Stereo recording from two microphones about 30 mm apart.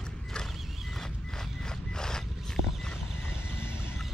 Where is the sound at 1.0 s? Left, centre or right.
Left.